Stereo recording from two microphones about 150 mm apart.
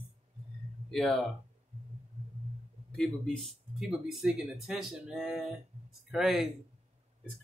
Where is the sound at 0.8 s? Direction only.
Centre (ahead or behind).